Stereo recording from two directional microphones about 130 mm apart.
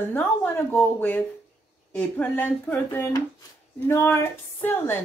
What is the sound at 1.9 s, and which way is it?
Speech, 15° left (ahead or behind).